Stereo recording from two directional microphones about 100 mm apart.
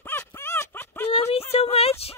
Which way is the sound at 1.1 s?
85° left.